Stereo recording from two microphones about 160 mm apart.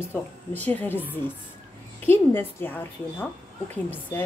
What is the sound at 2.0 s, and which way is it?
A woman's voice, 15° left (ahead or behind).